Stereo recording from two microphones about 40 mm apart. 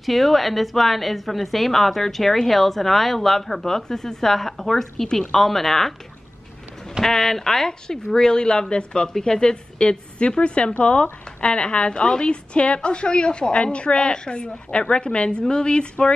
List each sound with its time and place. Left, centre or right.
0.0 s a woman's voice: centre
7.1 s a woman's voice: centre